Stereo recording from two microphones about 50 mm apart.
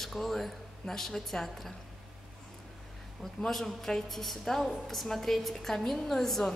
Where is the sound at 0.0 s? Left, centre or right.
Centre.